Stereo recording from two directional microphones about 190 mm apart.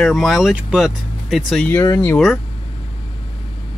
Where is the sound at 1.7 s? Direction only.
15° left (ahead or behind).